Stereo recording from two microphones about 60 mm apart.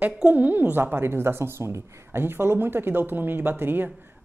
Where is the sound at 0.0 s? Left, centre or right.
Right.